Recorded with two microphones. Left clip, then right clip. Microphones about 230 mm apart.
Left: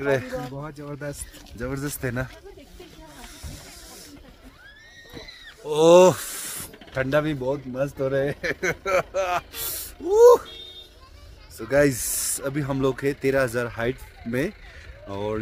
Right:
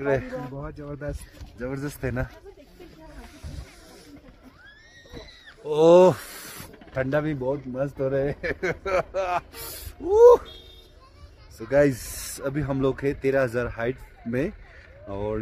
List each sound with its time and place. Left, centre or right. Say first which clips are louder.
0.0 s speech: left 1 dB; centre
0.6 s speech: left 1 dB; centre
1.6 s speech: left 1 dB; centre
5.7 s speech: left 1 dB; centre
11.5 s speech: even; centre